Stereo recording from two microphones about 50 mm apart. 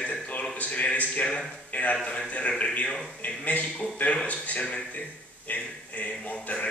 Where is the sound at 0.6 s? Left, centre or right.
Left.